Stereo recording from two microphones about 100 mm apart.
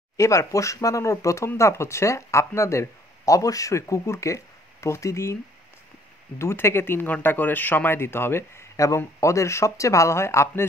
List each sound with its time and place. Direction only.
0.2 s speech: 30° left (ahead or behind)